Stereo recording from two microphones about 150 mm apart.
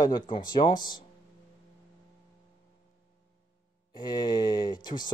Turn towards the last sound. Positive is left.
turn(degrees=30)  # may be behind; listen again after turning